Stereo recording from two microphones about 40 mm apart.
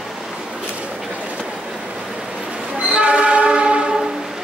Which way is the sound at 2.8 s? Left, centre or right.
Right.